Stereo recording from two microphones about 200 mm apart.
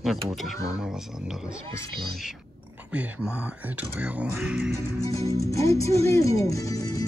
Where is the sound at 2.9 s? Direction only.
5° right (ahead or behind).